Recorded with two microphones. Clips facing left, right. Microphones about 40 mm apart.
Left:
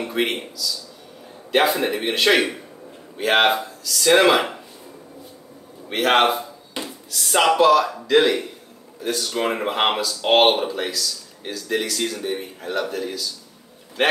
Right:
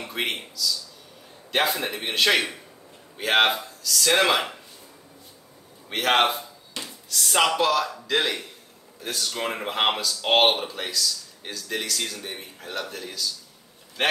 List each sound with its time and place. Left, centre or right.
0.0 s a man's voice: centre
5.9 s speech: centre
6.8 s a sound: centre
7.1 s speech: centre